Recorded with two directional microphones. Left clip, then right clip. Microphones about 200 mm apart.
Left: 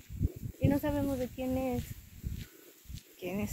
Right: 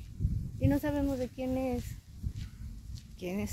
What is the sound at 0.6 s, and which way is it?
Speech, centre (ahead or behind).